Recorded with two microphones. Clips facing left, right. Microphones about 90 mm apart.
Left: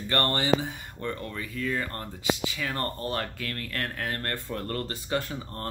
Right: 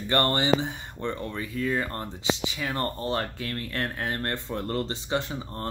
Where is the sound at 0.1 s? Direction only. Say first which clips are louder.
Right 2 dB; 20° right (ahead or behind).